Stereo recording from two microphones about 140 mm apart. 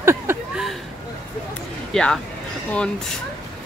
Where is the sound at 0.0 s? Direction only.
20° right (ahead or behind).